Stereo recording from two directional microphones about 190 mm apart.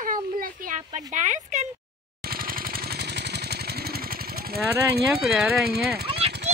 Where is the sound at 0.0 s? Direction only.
45° right (ahead or behind).